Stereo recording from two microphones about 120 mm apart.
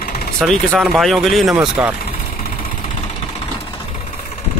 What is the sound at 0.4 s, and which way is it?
Speech, 5° left (ahead or behind).